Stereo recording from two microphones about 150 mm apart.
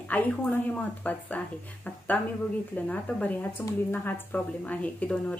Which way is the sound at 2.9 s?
10° left (ahead or behind).